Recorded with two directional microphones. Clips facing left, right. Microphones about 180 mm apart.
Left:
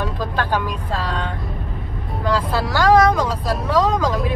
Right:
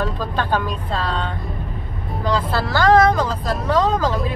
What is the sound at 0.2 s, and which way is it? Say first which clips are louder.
Speech: even; 10° left (ahead or behind).